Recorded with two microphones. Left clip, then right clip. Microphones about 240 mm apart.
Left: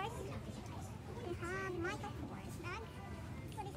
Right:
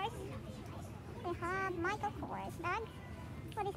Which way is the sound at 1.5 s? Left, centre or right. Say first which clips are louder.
Right 5 dB; centre.